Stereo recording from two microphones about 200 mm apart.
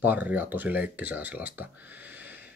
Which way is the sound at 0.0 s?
10° right (ahead or behind).